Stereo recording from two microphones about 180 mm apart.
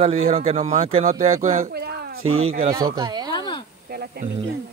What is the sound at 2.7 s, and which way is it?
Speech, 20° right (ahead or behind).